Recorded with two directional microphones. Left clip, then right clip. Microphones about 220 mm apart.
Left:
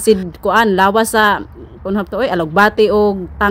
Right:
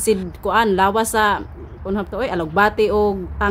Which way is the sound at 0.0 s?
30° left (ahead or behind).